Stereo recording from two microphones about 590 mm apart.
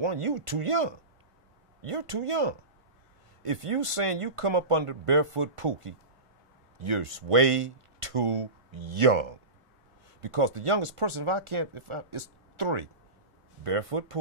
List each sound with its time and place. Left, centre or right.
0.0 s speech: right